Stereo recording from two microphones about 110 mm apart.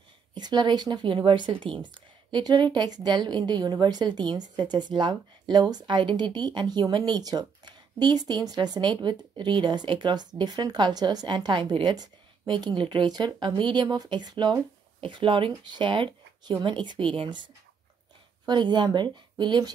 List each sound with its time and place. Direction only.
0.3 s a woman's voice: 40° right (ahead or behind)
18.5 s a woman's voice: 45° right (ahead or behind)